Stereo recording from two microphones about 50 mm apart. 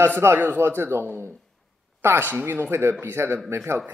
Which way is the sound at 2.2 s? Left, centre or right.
Right.